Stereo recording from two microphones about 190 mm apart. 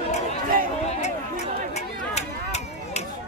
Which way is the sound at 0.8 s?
35° left (ahead or behind).